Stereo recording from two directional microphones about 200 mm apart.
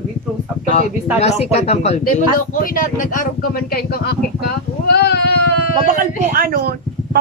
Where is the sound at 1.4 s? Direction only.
30° left (ahead or behind).